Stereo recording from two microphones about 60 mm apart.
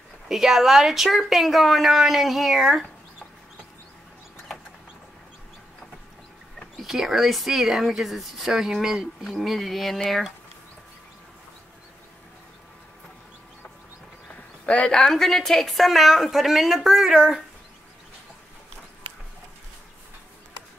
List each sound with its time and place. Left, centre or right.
0.3 s speech: centre
6.8 s speech: centre
14.7 s speech: left
15.0 s speech: centre